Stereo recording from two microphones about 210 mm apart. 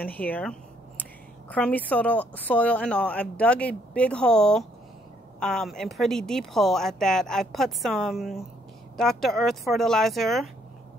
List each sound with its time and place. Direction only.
0.0 s a woman's voice: 10° left (ahead or behind)